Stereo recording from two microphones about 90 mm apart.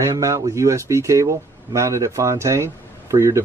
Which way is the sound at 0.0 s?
40° right (ahead or behind).